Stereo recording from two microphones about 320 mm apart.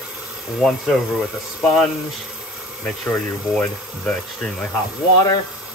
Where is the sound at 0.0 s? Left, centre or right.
Centre.